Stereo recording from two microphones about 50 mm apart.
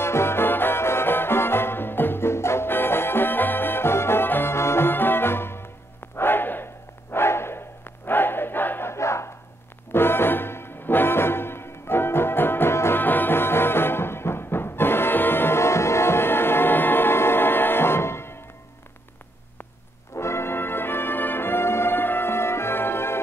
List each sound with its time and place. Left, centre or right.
0.0 s music: left
6.1 s bow-wow: left
8.1 s choir: left
8.9 s battle cry: left
9.9 s music: left
12.7 s music: left
13.0 s music: left
20.2 s music: left